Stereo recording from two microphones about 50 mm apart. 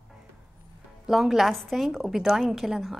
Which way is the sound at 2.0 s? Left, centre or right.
Centre.